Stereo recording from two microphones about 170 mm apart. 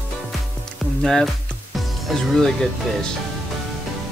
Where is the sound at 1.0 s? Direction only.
5° left (ahead or behind).